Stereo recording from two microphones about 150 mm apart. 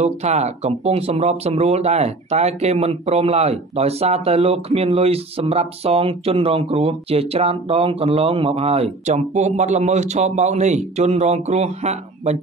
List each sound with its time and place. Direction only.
0.0 s speech: 45° right (ahead or behind)